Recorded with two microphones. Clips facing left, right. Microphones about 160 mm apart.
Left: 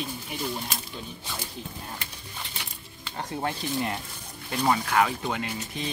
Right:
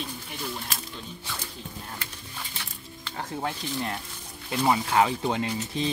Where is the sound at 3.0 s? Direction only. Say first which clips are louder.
Left 1 dB; centre (ahead or behind).